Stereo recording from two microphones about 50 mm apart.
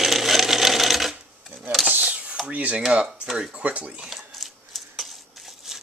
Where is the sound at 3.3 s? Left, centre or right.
Right.